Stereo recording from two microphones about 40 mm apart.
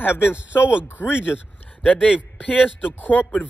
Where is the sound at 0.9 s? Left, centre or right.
Left.